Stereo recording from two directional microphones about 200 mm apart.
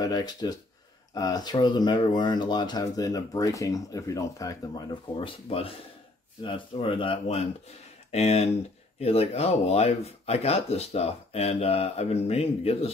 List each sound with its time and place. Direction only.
0.0 s speech: 20° left (ahead or behind)